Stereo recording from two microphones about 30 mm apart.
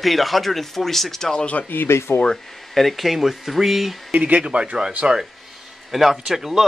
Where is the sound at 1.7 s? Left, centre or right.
Left.